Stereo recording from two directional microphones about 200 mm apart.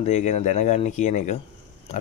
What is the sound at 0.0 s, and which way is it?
Speech, 35° left (ahead or behind).